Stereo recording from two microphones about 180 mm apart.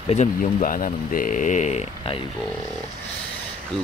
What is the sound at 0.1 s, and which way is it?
Speech, 45° left (ahead or behind).